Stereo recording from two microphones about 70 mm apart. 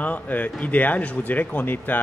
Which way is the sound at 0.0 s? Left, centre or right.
Left.